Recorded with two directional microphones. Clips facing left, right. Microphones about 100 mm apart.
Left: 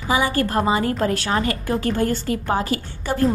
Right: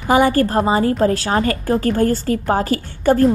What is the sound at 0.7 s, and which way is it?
A woman's voice, 30° right (ahead or behind).